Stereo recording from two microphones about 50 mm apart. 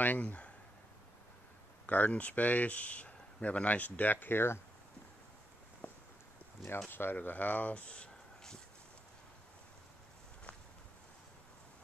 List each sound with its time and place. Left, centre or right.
0.0 s speech: left
1.9 s speech: left
5.8 s a sound: left
6.9 s speech: left
7.2 s speech: left